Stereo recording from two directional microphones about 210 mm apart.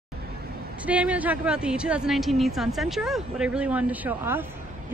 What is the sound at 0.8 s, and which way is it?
A woman's voice, 5° right (ahead or behind).